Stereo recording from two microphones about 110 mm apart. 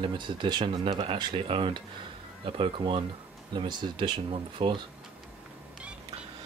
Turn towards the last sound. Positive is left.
turn(degrees=-50)  # may be behind; listen again after turning